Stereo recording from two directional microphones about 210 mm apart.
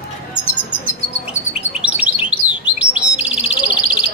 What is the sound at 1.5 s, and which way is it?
Bird, 5° right (ahead or behind).